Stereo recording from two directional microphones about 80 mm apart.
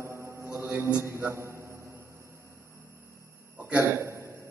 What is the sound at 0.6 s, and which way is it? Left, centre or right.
Mantra, right.